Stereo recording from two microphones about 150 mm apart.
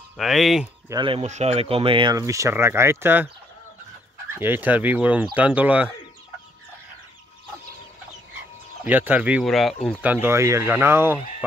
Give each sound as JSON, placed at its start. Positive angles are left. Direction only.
{"t": 0.2, "sound": "speech", "side_deg": 0}
{"t": 0.8, "sound": "speech", "side_deg": -30}
{"t": 1.2, "sound": "speech", "side_deg": -50}
{"t": 2.1, "sound": "speech", "side_deg": -20}
{"t": 4.4, "sound": "speech", "side_deg": -15}
{"t": 8.8, "sound": "speech", "side_deg": -10}
{"t": 9.4, "sound": "speech", "side_deg": 0}
{"t": 10.0, "sound": "speech", "side_deg": -10}